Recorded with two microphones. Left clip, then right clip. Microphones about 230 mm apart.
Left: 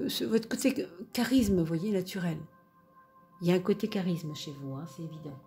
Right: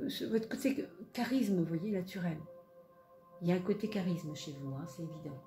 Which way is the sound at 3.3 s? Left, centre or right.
Left.